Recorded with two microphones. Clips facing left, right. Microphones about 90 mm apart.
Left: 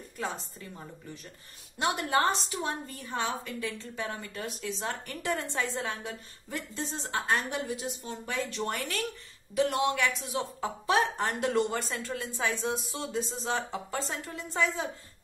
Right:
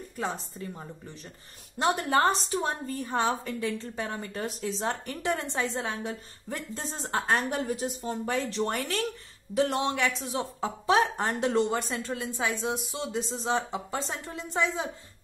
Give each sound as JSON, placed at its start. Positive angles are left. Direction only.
{"t": 1.8, "sound": "a woman's voice", "side_deg": -35}